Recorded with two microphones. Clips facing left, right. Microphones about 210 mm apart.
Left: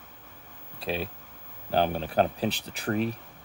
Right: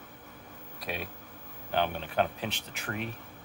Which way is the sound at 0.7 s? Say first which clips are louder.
Left 6 dB; 30° left (ahead or behind).